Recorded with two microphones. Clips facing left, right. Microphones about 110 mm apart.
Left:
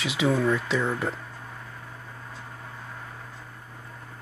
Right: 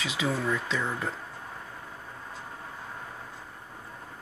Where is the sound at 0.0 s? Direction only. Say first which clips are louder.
Left 6 dB; 35° right (ahead or behind).